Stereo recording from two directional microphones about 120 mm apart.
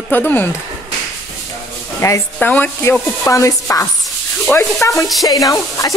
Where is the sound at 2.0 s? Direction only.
25° left (ahead or behind).